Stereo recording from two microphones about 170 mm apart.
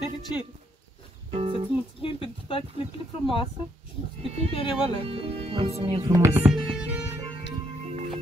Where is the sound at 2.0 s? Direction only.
30° left (ahead or behind).